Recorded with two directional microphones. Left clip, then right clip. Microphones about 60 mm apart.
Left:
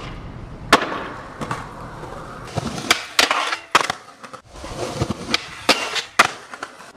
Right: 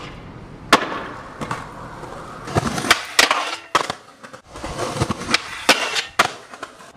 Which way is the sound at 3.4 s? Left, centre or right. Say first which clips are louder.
Left 3 dB; left.